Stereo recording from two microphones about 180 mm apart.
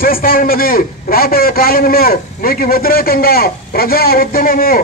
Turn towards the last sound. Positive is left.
turn(degrees=55)  # may be behind; listen again after turning